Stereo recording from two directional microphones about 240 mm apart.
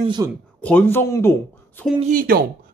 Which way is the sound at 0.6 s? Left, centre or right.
Centre.